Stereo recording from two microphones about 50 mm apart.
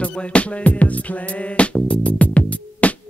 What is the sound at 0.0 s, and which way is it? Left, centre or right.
Music, left.